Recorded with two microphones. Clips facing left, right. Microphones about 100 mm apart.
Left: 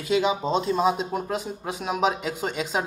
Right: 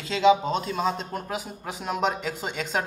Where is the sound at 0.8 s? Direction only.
10° left (ahead or behind).